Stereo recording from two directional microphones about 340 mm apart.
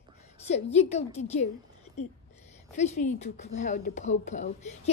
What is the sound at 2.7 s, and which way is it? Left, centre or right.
A woman's voice, centre.